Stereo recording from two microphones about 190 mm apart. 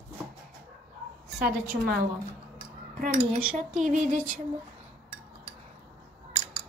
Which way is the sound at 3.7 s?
40° right (ahead or behind).